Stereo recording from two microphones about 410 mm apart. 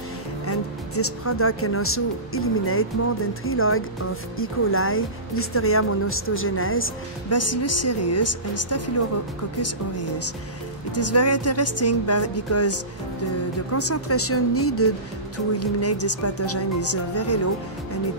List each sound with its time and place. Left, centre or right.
0.5 s speech: left